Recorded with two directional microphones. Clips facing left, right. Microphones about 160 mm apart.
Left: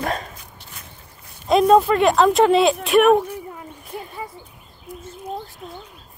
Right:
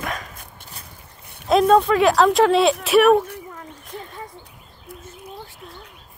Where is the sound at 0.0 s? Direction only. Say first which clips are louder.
Left 5 dB; 30° left (ahead or behind).